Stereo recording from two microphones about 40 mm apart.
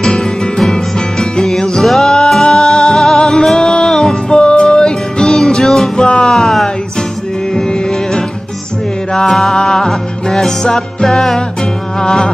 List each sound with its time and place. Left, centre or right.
0.0 s music: centre
6.2 s a sound: centre
9.1 s music: centre